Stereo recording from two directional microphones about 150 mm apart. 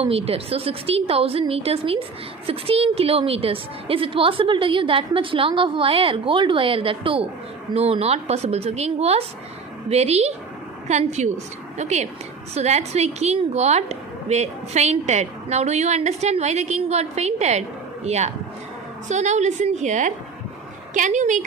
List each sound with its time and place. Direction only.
0.0 s a woman's voice: 40° right (ahead or behind)